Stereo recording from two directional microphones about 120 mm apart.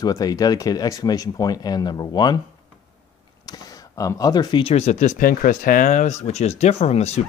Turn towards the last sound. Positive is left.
turn(degrees=65)  # may be behind; listen again after turning